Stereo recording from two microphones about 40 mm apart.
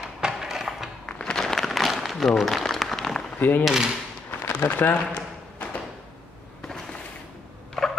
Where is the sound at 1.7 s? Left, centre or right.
Centre.